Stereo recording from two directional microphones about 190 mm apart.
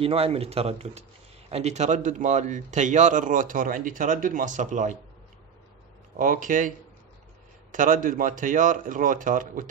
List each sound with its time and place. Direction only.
0.0 s speech: 30° right (ahead or behind)
6.1 s speech: 45° right (ahead or behind)
7.7 s speech: 45° right (ahead or behind)